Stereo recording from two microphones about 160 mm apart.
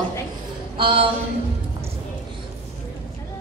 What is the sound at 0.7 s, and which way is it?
Speech, 30° right (ahead or behind).